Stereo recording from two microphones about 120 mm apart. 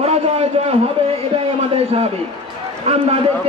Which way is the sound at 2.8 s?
55° right (ahead or behind).